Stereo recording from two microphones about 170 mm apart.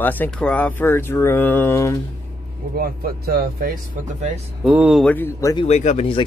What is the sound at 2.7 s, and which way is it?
Speech, 60° right (ahead or behind).